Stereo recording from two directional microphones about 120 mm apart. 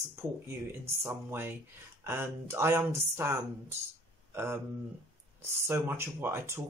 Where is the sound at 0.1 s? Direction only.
20° right (ahead or behind).